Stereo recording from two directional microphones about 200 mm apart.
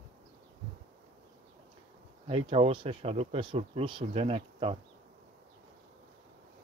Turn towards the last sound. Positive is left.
turn(degrees=-30)  # may be behind; listen again after turning